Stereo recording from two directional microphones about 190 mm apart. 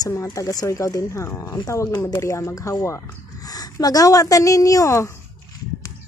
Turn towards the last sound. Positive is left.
turn(degrees=15)  # may be behind; listen again after turning